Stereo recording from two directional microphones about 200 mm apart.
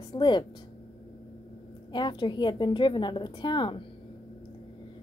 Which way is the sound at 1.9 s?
20° left (ahead or behind).